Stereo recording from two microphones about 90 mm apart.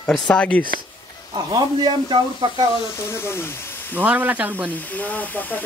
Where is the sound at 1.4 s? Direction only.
55° right (ahead or behind).